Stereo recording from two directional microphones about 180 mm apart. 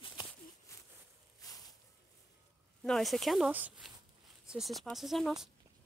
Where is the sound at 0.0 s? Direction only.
25° left (ahead or behind).